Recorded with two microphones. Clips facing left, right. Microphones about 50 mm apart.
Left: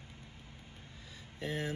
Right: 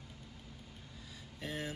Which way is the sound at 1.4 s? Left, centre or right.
Left.